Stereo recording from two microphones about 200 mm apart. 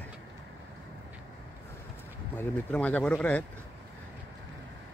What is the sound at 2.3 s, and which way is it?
Speech, 5° left (ahead or behind).